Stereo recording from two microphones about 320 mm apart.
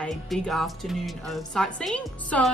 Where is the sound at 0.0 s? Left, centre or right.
Centre.